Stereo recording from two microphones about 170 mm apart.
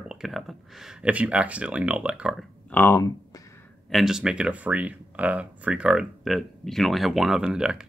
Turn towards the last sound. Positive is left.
turn(degrees=-5)  # may be behind; listen again after turning